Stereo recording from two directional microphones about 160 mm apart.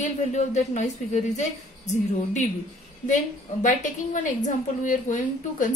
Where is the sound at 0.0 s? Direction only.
45° left (ahead or behind).